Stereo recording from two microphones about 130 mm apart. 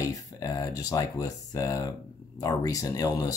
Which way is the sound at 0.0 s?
25° left (ahead or behind).